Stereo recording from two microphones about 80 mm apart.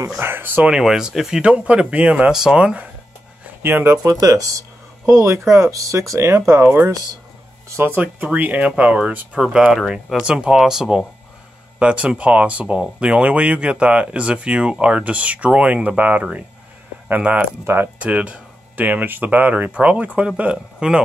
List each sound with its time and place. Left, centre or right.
0.2 s speech: right
0.7 s speech: centre
3.6 s speech: right
4.0 s speech: right; by 21.0 s centre